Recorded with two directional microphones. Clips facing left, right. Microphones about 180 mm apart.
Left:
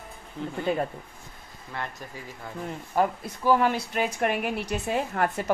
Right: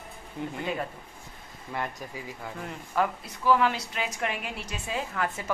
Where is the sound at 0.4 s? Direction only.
15° right (ahead or behind).